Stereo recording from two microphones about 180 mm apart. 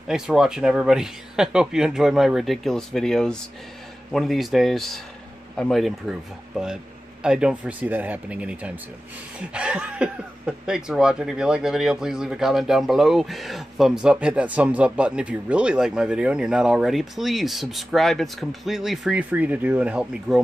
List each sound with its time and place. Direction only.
0.1 s speech: 5° right (ahead or behind)